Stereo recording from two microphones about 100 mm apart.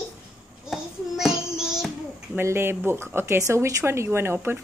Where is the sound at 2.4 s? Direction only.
25° right (ahead or behind).